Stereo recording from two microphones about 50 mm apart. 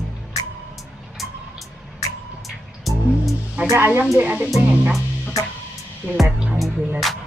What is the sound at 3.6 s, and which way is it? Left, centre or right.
Music, right.